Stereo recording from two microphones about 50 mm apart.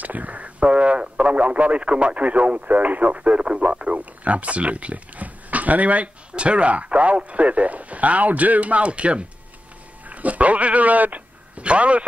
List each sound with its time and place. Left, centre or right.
0.0 s a man's voice: right